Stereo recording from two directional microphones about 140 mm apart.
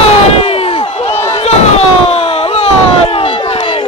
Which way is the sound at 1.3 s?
45° left (ahead or behind).